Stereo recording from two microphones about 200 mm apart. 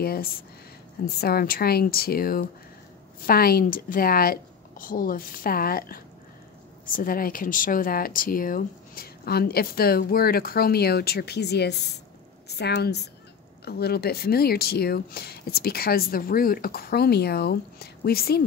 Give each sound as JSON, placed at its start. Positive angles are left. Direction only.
{"t": 0.0, "sound": "a woman's voice", "side_deg": 50}